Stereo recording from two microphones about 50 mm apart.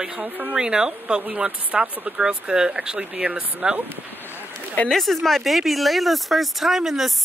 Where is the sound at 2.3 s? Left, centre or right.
Centre; by 3.9 s right.